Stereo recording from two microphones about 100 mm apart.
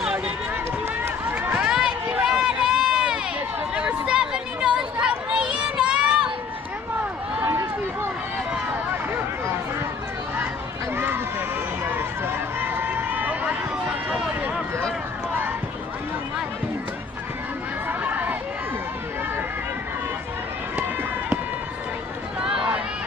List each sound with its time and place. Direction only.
1.0 s run: 20° right (ahead or behind)
1.5 s run: 10° right (ahead or behind)
3.7 s chatter: 10° right (ahead or behind)
7.4 s run: 25° right (ahead or behind)
11.8 s run: 20° right (ahead or behind)
17.8 s chatter: 20° right (ahead or behind)